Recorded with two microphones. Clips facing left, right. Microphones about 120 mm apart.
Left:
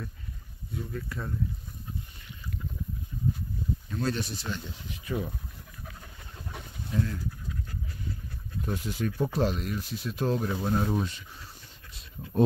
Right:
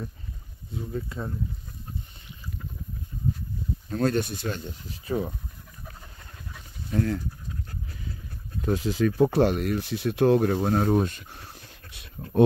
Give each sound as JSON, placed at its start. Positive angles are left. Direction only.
{"t": 0.7, "sound": "speech", "side_deg": -25}
{"t": 3.9, "sound": "speech", "side_deg": -50}
{"t": 4.9, "sound": "speech", "side_deg": -35}
{"t": 6.5, "sound": "a sound", "side_deg": 70}
{"t": 6.9, "sound": "speech", "side_deg": -70}
{"t": 8.6, "sound": "speech", "side_deg": -90}